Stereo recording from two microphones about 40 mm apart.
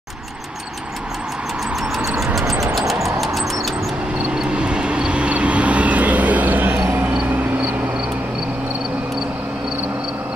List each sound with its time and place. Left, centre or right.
2.0 s vehicle: centre
2.3 s music: centre
4.4 s vehicle: right
7.2 s a sound: right